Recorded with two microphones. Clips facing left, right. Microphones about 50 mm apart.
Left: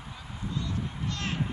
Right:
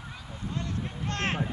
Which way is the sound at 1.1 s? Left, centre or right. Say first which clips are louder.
Right 6 dB; right.